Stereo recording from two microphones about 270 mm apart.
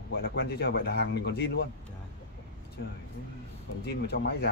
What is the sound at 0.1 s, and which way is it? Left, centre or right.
Speech, left.